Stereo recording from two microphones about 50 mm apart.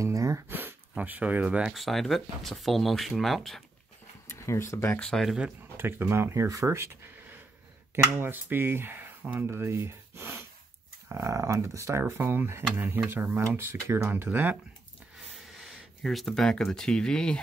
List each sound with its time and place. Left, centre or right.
0.5 s a sound: right
0.9 s speech: right
1.7 s speech: centre
4.3 s speech: left
5.1 s speech: centre
5.8 s speech: right
7.9 s speech: right
9.2 s speech: right
9.5 s speech: right
11.2 s speech: right
12.1 s speech: right
14.1 s speech: right
16.0 s speech: centre